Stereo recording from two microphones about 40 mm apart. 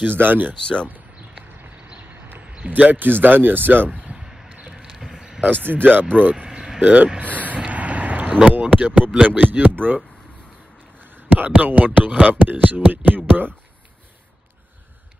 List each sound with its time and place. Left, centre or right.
0.0 s speech: right
2.4 s a sound: right
2.8 s speech: right
4.2 s a sound: centre
5.4 s speech: right
6.3 s vehicle: right
6.8 s speech: right
7.2 s a sound: right
8.5 s speech: right
11.1 s speech: right